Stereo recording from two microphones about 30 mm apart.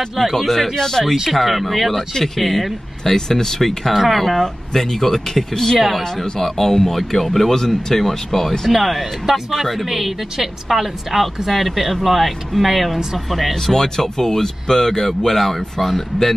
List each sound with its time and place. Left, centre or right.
0.2 s a woman's voice: centre
0.7 s speech: centre
1.3 s a woman's voice: centre
3.2 s speech: centre
3.9 s speech: centre
5.8 s a woman's voice: centre
6.4 s a woman's voice: centre
13.7 s speech: centre